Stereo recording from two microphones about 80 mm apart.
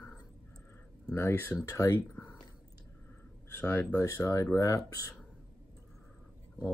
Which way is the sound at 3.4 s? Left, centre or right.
Left.